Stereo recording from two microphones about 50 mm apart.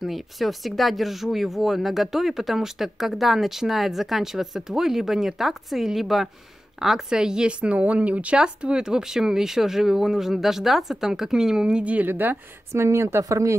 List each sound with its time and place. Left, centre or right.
0.0 s speech: centre; by 8.4 s right
8.4 s speech: centre
11.9 s speech: right
12.7 s speech: right